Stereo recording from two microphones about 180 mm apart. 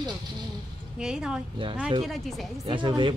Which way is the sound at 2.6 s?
25° right (ahead or behind).